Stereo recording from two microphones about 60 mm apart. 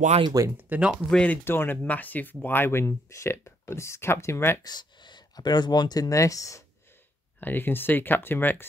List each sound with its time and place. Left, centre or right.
0.3 s speech: right
0.7 s speech: centre
1.1 s speech: left
1.4 s speech: left
1.8 s speech: left
5.3 s speech: left
7.3 s speech: left